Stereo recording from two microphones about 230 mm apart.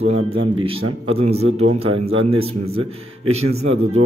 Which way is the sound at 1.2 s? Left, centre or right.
Right.